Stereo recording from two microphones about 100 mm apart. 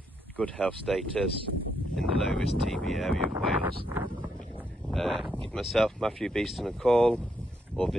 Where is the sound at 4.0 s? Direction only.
20° right (ahead or behind).